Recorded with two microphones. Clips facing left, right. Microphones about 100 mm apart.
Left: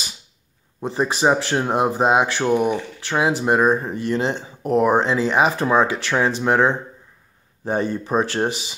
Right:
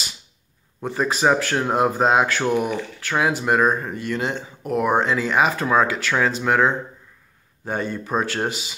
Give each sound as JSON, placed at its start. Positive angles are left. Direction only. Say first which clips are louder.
{"t": 0.8, "sound": "speech", "louder": "left 1 dB", "side_deg": 25}